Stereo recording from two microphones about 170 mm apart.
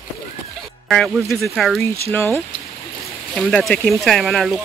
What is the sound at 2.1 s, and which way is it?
Speech, 10° left (ahead or behind).